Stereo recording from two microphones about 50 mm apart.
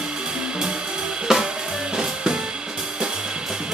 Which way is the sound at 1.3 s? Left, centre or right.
Centre.